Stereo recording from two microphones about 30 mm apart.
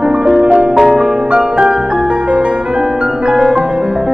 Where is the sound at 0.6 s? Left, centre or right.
Centre.